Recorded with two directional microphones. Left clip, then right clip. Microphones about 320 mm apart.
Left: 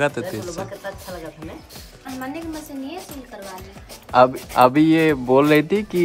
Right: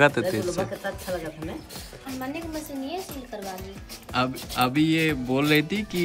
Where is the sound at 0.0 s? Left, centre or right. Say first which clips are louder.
Right 2 dB; centre.